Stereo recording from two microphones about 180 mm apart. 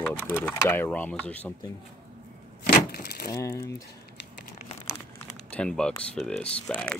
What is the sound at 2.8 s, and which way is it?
Wood, 60° left (ahead or behind).